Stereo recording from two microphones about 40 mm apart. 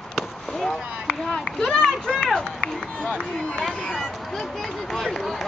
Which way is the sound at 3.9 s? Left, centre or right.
Centre.